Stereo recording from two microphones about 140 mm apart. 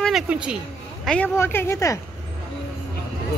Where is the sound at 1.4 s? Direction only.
15° left (ahead or behind).